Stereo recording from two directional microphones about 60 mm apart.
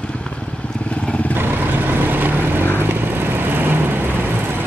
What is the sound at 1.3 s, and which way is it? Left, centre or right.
Vehicle, right.